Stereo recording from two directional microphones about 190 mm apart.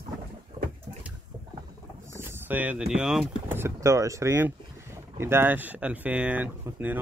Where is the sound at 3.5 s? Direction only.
15° right (ahead or behind).